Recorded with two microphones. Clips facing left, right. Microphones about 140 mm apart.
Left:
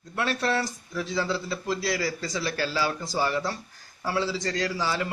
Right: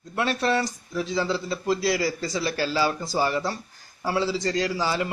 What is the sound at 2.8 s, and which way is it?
Speech, 20° right (ahead or behind).